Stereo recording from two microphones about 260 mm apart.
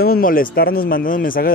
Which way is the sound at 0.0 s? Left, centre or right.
Left.